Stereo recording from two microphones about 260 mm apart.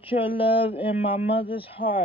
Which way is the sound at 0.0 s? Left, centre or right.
Centre.